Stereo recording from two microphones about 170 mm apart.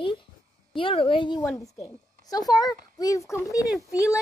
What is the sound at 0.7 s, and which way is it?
Speech, 30° left (ahead or behind).